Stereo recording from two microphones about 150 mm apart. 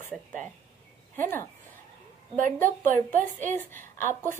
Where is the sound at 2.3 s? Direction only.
60° right (ahead or behind).